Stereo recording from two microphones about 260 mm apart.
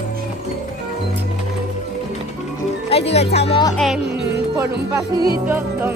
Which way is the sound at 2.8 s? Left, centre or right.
Left.